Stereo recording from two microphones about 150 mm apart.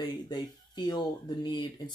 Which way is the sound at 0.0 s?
30° left (ahead or behind).